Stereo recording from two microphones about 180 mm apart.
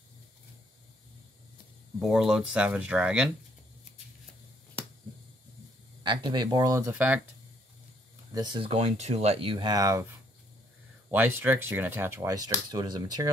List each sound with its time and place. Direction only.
2.0 s speech: 5° right (ahead or behind)
6.0 s speech: 25° right (ahead or behind); by 7.2 s 10° right (ahead or behind)
8.3 s speech: 25° right (ahead or behind)
11.1 s speech: 10° right (ahead or behind)